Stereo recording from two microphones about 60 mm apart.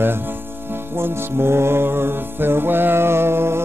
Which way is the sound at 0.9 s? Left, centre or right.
Right.